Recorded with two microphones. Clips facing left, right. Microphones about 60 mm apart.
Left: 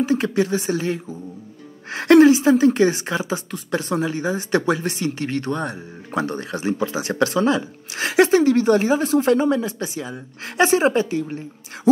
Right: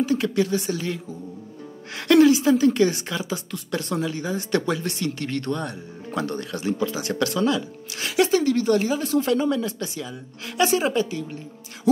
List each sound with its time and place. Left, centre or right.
0.0 s a woman's voice: left
10.6 s speech: left